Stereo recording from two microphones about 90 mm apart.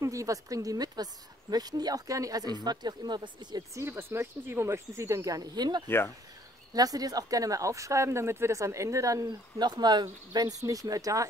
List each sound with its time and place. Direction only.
0.0 s speech: 35° right (ahead or behind); by 3.6 s 50° right (ahead or behind)
3.7 s speech: 30° right (ahead or behind); by 5.9 s 50° right (ahead or behind)
5.9 s speech: 25° left (ahead or behind)
6.7 s speech: 45° right (ahead or behind)